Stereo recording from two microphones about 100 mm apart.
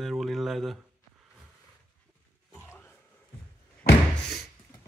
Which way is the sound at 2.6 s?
25° left (ahead or behind).